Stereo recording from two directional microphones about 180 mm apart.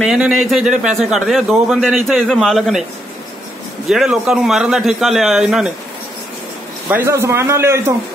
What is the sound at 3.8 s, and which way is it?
A man's voice, centre (ahead or behind).